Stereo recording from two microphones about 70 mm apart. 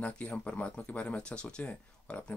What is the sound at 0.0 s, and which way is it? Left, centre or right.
Speech, centre.